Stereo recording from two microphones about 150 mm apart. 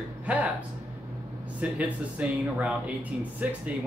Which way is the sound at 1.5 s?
10° right (ahead or behind).